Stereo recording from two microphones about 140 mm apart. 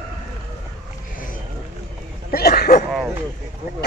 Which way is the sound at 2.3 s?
90° left.